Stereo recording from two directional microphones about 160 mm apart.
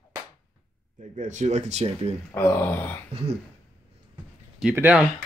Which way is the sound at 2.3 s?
10° left (ahead or behind).